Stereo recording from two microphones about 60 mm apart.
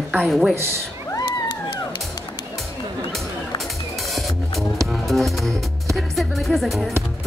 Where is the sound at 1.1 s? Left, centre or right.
Left.